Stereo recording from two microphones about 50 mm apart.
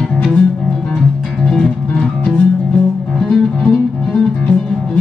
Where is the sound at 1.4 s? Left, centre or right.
Centre.